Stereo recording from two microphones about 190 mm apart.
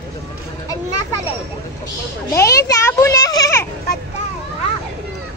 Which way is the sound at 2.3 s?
15° left (ahead or behind).